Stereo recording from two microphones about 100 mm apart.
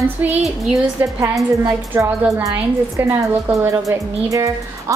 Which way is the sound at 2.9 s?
30° right (ahead or behind).